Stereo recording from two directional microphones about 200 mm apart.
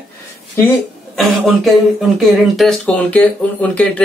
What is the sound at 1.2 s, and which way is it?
A man's voice, centre (ahead or behind).